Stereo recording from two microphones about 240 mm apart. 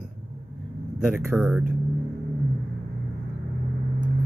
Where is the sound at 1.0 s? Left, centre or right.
Centre.